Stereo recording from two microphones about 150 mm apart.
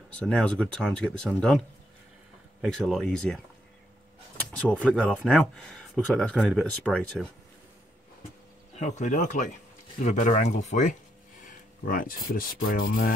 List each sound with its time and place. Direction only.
0.1 s speech: 5° left (ahead or behind)
2.6 s speech: centre (ahead or behind)
4.4 s speech: 5° left (ahead or behind)
8.7 s speech: 50° left (ahead or behind)
11.4 s a sound: 70° left (ahead or behind)
12.3 s rub: 80° left